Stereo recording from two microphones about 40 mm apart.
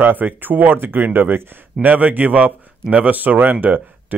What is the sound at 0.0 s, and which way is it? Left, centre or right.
Speech, right.